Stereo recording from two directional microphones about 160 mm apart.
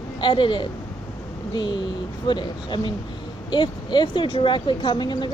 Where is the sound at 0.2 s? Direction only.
30° left (ahead or behind).